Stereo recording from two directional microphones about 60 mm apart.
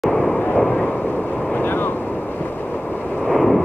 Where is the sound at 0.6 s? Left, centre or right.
Centre.